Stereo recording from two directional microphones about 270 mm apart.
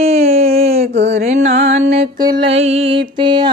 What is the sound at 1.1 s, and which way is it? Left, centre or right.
Music, right.